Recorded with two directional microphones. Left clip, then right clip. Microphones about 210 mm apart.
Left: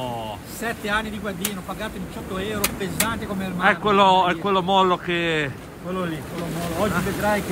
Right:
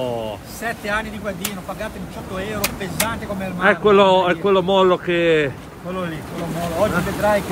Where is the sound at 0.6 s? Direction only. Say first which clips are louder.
Right 1 dB; 15° left (ahead or behind).